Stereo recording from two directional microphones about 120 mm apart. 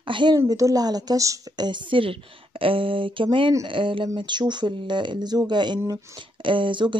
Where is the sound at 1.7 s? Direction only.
45° right (ahead or behind).